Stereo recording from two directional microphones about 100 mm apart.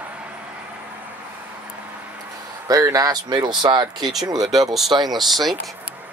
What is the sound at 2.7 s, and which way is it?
Speech, 40° right (ahead or behind).